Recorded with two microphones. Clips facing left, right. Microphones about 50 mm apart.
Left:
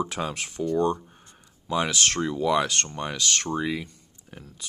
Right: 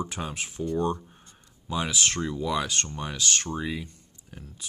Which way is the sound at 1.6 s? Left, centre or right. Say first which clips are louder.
Left 3 dB; left.